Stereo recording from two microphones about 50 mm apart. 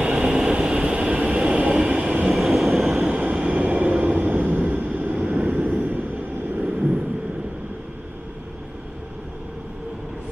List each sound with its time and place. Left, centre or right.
0.0 s train: centre
2.3 s train: centre
3.4 s vehicle: right